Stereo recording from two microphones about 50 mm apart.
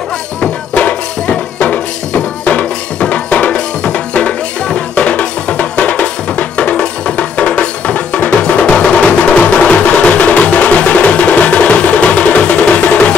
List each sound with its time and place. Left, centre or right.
0.4 s music: left